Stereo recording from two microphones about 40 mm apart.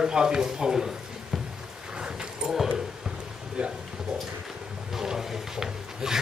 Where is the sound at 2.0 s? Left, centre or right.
Right.